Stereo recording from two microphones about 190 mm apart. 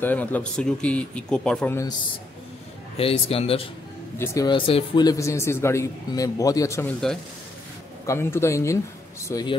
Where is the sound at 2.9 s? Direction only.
30° left (ahead or behind).